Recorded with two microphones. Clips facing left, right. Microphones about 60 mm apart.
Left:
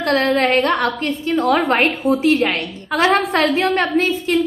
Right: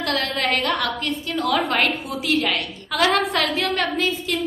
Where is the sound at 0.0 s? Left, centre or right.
Left.